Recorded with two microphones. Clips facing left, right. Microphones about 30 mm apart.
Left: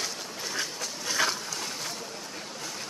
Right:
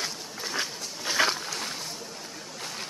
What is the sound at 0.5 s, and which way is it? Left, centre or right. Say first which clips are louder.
Dog: right 1 dB; right.